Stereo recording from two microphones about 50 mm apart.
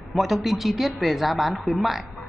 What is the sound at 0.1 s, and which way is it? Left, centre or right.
A woman's voice, centre.